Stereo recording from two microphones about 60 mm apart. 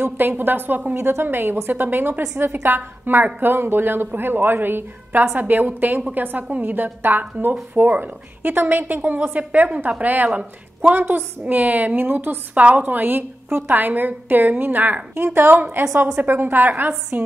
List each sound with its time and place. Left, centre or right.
0.0 s a woman's voice: right
0.9 s a woman's voice: right